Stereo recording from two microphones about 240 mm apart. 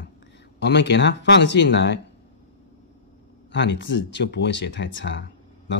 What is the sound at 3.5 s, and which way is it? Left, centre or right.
Speech, left.